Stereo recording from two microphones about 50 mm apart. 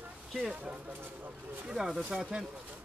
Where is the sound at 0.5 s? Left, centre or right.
Right.